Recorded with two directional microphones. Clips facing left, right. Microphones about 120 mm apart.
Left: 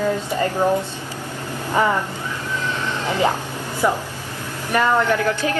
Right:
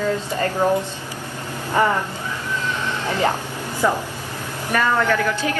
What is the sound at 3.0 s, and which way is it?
Speech, 15° left (ahead or behind).